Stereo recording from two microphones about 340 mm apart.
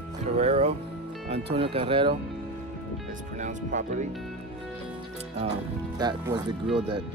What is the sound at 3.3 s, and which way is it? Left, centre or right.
Speech, right.